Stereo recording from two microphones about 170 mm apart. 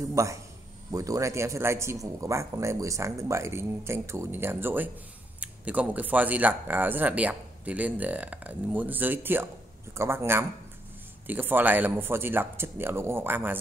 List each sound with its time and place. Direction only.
0.1 s speech: 20° right (ahead or behind)